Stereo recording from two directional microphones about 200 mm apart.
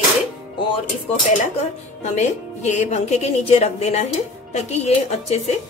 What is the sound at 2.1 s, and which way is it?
Speech, 35° left (ahead or behind).